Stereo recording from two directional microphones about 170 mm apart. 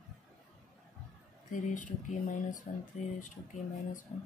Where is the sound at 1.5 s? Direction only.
45° left (ahead or behind).